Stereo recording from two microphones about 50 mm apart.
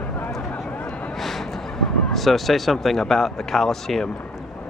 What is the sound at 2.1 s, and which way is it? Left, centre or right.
Speech, centre.